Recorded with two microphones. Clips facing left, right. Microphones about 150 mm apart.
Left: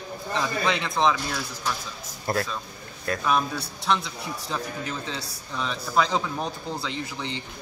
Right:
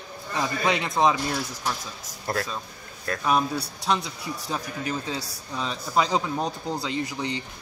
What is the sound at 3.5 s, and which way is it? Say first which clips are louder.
Speech: even; 35° right (ahead or behind).